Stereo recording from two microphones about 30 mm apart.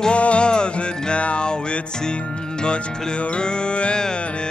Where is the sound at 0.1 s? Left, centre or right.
Left.